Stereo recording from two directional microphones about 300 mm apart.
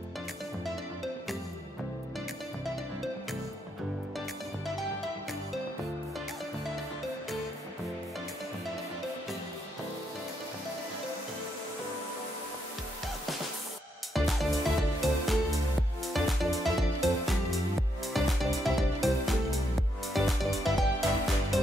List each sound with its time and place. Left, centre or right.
2.6 s music: centre
14.1 s music: centre